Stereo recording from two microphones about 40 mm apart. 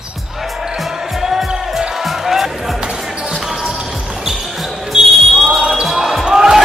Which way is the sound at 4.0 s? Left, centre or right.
Right.